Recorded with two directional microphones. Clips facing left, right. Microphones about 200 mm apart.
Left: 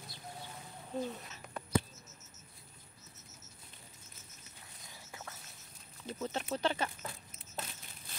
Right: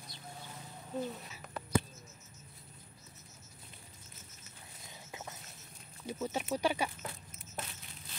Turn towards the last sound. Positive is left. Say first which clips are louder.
# right 2 dB
turn(degrees=-10)  # may be behind; listen again after turning